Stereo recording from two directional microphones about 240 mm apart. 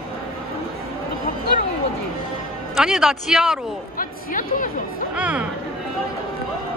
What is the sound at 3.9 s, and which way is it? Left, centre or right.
Speech, left.